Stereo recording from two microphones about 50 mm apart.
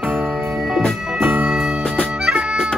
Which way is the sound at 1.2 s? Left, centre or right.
Right.